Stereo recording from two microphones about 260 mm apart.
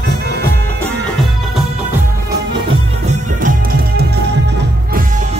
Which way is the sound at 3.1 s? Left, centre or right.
Right.